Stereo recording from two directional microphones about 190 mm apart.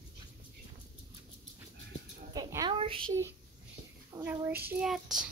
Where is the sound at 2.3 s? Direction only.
20° right (ahead or behind).